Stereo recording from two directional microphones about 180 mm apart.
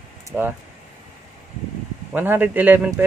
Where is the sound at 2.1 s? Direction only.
10° right (ahead or behind).